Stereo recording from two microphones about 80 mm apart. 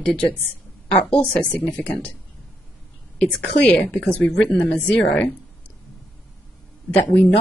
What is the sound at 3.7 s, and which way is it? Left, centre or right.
Speech, centre.